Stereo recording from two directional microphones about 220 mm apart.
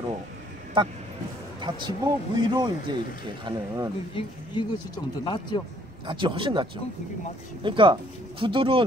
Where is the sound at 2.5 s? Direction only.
20° right (ahead or behind).